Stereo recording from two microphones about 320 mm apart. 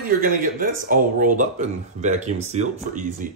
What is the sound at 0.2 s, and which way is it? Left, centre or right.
Speech, right.